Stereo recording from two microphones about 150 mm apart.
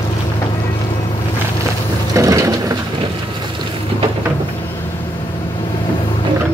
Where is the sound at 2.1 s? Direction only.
20° right (ahead or behind).